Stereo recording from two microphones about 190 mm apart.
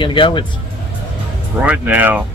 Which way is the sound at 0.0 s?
25° left (ahead or behind).